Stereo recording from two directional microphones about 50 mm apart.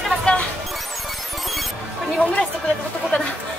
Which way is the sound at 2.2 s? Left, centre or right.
Left.